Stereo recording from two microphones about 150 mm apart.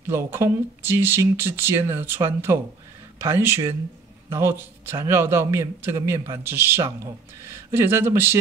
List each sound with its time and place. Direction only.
0.0 s a man's voice: 15° right (ahead or behind)